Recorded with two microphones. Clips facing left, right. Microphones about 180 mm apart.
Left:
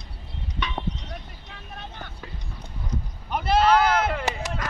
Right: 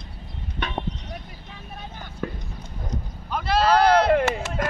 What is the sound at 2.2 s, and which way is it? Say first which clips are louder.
Clip-clop: right 11 dB; 55° right (ahead or behind).